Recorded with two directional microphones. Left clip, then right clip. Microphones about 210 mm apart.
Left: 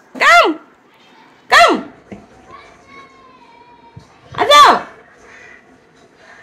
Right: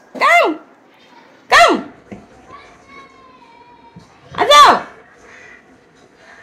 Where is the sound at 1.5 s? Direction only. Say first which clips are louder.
Even; 5° left (ahead or behind).